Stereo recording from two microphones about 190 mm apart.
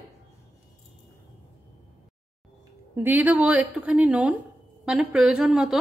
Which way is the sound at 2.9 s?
10° right (ahead or behind).